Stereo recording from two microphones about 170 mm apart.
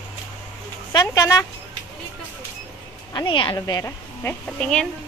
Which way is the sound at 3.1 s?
25° left (ahead or behind).